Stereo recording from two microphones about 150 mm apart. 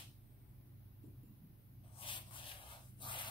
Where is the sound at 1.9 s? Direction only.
35° left (ahead or behind).